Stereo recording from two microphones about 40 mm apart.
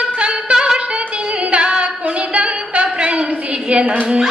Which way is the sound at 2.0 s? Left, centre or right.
Right.